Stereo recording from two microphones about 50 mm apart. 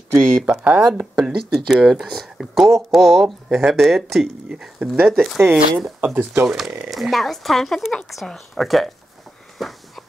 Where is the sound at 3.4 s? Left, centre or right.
Centre.